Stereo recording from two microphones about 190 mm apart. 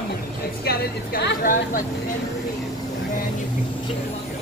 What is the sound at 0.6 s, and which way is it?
Speech, 55° left (ahead or behind).